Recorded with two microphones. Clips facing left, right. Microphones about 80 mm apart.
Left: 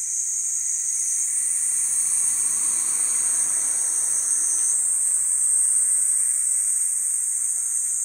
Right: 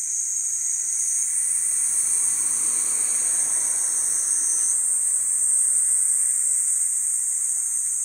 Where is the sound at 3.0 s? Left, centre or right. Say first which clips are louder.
Even; left.